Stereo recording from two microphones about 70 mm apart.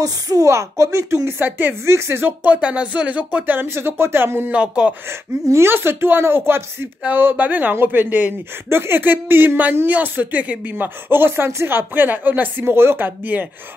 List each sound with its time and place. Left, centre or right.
0.0 s a woman's voice: right
2.4 s speech: centre
3.5 s speech: right
4.5 s speech: centre
5.0 s speech: right